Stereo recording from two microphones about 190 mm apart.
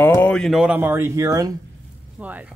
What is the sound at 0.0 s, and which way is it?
Speech, 10° left (ahead or behind).